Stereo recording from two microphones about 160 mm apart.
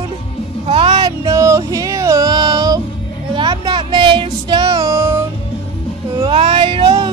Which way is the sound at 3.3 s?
30° right (ahead or behind).